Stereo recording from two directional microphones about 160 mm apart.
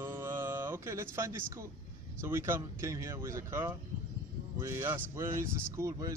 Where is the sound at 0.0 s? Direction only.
15° right (ahead or behind).